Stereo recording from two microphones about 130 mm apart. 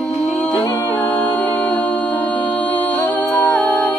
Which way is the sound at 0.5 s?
25° left (ahead or behind).